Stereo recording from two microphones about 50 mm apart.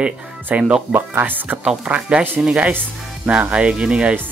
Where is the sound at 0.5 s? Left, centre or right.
Right.